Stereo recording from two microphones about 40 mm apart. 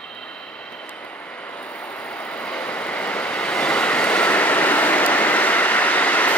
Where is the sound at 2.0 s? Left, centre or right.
Left.